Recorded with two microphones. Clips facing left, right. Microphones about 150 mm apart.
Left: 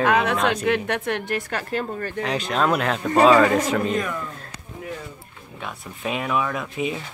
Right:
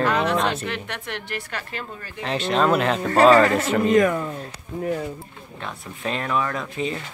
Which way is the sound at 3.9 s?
40° right (ahead or behind).